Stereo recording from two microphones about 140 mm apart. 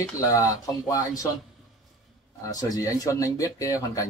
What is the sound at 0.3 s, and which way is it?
Speech, 25° left (ahead or behind).